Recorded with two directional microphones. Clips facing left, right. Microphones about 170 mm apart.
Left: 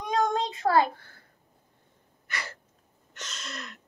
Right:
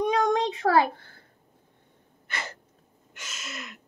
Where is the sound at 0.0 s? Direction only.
75° right (ahead or behind).